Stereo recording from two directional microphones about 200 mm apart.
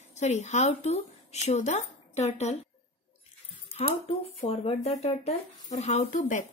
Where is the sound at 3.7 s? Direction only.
30° left (ahead or behind).